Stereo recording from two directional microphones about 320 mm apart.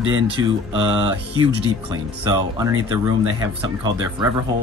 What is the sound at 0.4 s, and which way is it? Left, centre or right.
Speech, centre.